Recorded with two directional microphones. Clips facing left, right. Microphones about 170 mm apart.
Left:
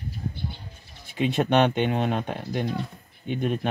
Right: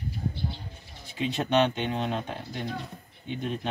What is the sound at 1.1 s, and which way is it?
Speech, 60° left (ahead or behind).